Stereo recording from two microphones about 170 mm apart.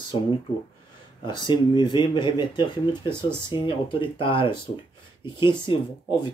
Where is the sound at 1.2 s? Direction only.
30° left (ahead or behind).